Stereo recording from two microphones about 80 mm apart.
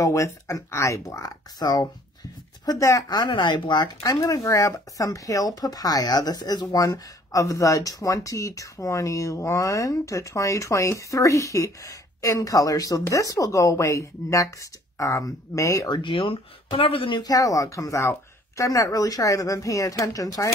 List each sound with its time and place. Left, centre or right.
0.0 s speech: left
1.6 s speech: left
2.6 s speech: left
7.3 s speech: left
15.9 s speech: left
17.3 s speech: left